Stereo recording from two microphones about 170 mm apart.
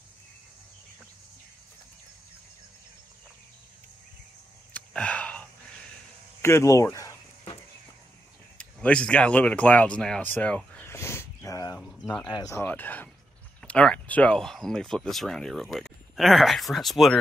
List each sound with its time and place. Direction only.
4.7 s a sound: 5° left (ahead or behind)
6.4 s speech: 15° left (ahead or behind)
8.5 s speech: 5° left (ahead or behind)
11.8 s speech: 5° left (ahead or behind)
12.3 s speech: 20° left (ahead or behind); by 17.2 s centre (ahead or behind)